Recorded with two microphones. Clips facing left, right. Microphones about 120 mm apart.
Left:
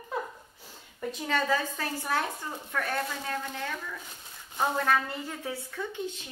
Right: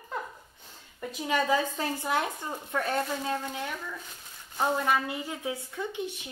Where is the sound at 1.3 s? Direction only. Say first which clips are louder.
Right 2 dB; 15° right (ahead or behind).